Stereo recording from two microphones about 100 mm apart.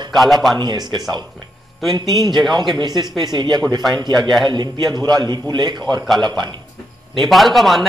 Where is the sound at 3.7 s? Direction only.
Centre (ahead or behind).